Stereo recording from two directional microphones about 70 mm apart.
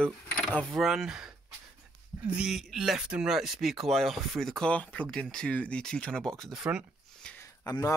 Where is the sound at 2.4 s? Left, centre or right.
Centre.